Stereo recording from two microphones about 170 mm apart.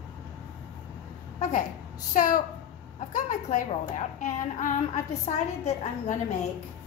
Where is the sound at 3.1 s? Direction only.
50° left (ahead or behind).